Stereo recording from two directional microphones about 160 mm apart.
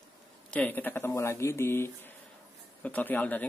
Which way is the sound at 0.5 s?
10° left (ahead or behind).